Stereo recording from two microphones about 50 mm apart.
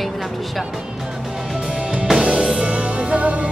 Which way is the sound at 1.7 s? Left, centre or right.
Right.